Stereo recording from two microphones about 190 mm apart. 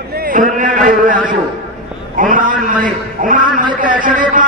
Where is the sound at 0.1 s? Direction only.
50° right (ahead or behind).